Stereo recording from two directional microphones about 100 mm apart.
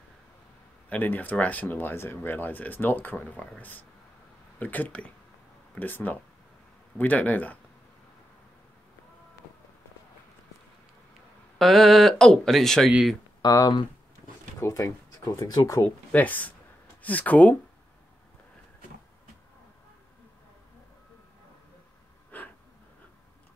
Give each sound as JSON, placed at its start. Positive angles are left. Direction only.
{"t": 0.8, "sound": "speech", "side_deg": 15}
{"t": 11.5, "sound": "speech", "side_deg": 0}
{"t": 13.4, "sound": "speech", "side_deg": 40}
{"t": 15.8, "sound": "speech", "side_deg": 15}